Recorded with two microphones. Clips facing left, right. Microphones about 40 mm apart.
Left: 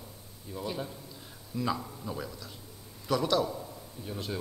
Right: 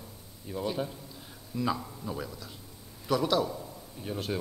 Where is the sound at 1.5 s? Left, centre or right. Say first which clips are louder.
Right 1 dB; centre.